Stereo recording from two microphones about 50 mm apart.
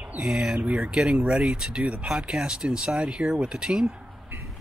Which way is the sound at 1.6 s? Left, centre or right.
Centre.